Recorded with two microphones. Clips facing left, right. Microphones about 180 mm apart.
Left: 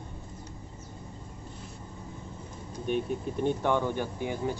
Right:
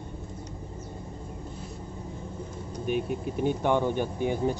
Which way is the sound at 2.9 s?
10° right (ahead or behind).